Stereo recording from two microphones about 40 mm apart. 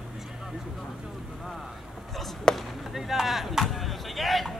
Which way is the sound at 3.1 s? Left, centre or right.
Centre.